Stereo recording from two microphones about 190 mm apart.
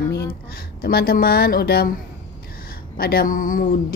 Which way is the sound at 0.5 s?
50° left (ahead or behind).